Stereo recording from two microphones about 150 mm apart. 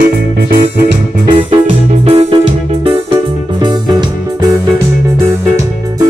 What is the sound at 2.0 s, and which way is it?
Music, 40° right (ahead or behind).